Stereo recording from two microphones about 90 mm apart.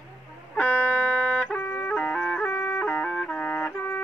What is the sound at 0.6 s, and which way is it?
Music, 15° left (ahead or behind).